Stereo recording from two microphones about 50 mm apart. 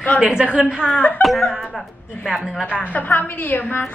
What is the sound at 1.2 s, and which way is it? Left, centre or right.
Speech, centre.